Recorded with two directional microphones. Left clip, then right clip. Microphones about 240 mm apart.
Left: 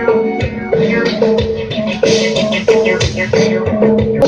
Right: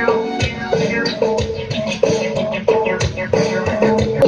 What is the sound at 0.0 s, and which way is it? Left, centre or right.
Music, left.